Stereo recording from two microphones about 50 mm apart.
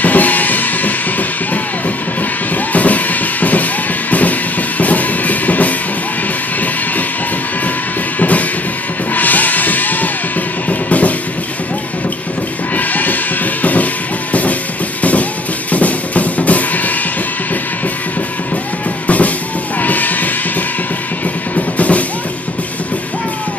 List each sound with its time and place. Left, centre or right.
0.0 s music: left
4.1 s drum kit: left
8.2 s music: left
12.7 s music: left
15.7 s drum: left
19.0 s music: left
21.5 s music: left